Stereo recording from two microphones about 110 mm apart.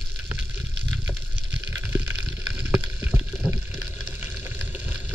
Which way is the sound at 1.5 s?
20° right (ahead or behind).